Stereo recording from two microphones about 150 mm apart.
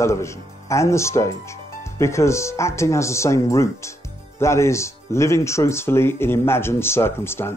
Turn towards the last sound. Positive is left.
turn(degrees=15)  # may be behind; listen again after turning